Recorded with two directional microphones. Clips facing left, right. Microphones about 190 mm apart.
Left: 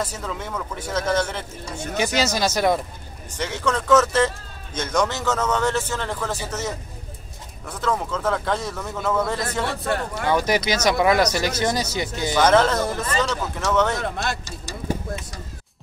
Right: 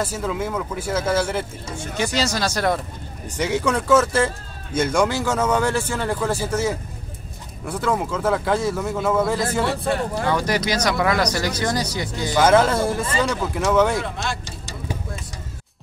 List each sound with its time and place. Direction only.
0.0 s a man's voice: 5° right (ahead or behind)
2.0 s speech: 20° left (ahead or behind)
3.3 s a man's voice: 10° right (ahead or behind)
10.3 s speech: 20° left (ahead or behind)
12.4 s a man's voice: 10° right (ahead or behind)
14.0 s speech: 50° left (ahead or behind)